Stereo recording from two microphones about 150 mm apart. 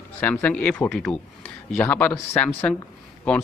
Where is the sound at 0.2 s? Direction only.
10° left (ahead or behind).